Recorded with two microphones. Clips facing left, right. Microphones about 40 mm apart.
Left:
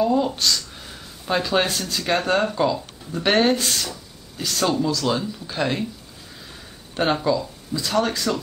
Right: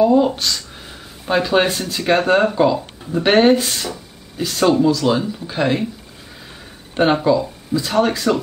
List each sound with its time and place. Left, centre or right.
0.0 s speech: centre
7.0 s speech: centre